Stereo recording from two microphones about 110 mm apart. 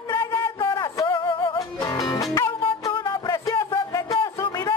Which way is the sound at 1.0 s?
45° left (ahead or behind).